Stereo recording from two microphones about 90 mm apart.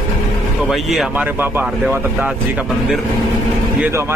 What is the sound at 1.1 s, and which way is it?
A man's voice, 20° right (ahead or behind).